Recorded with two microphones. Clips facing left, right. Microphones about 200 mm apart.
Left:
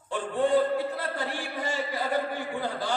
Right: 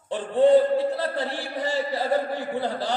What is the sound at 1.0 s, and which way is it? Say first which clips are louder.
A man's voice: right 4 dB; 35° right (ahead or behind).